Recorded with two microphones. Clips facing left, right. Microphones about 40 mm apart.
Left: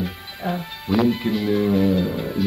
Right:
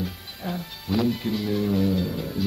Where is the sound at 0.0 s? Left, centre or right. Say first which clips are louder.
Left 5 dB; left.